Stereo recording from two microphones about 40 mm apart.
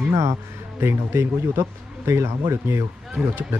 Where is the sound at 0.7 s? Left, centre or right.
Right.